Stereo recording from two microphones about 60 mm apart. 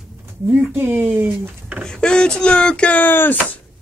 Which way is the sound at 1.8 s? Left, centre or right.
Centre.